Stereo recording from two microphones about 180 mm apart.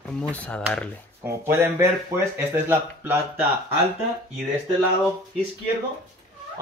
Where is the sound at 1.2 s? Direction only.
15° right (ahead or behind).